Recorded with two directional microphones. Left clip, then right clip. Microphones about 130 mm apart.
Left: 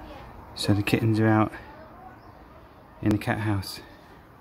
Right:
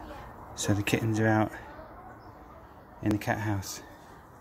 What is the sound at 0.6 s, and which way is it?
Speech, 30° left (ahead or behind).